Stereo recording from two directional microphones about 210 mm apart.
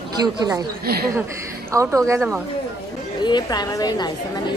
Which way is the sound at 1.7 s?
15° right (ahead or behind).